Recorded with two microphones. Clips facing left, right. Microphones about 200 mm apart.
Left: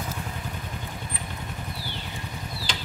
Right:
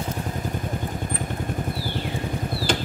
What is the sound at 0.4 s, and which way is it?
Vehicle, 45° right (ahead or behind).